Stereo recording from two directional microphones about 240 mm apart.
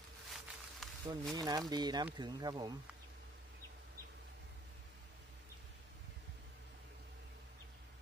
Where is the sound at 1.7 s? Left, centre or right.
Centre.